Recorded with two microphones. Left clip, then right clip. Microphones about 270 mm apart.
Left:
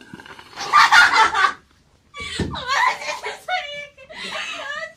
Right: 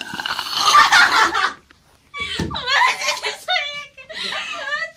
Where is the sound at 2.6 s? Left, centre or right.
Centre.